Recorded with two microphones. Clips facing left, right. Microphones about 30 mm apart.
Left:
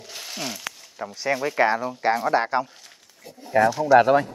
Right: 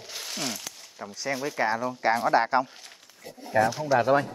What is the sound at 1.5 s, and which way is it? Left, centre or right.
Speech, left.